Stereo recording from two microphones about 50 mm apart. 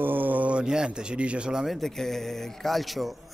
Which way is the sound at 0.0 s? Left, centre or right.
Right.